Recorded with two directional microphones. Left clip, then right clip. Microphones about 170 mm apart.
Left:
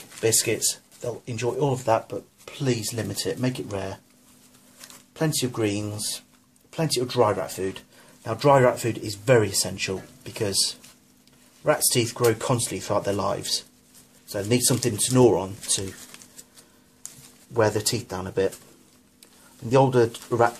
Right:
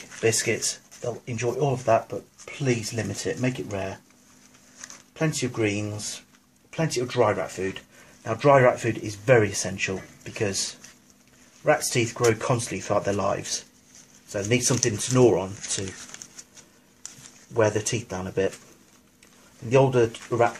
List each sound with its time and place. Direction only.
0.2 s speech: 5° left (ahead or behind)
5.2 s speech: 10° left (ahead or behind)
11.6 s speech: centre (ahead or behind)
17.6 s speech: 5° left (ahead or behind)
19.7 s speech: 10° left (ahead or behind)